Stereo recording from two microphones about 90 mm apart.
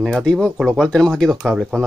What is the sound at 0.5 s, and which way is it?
Speech, 5° right (ahead or behind).